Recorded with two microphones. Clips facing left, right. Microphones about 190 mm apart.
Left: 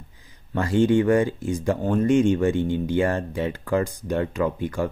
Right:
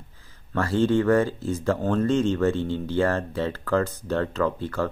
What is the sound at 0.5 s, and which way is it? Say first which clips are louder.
Speech: left 2 dB; 15° left (ahead or behind).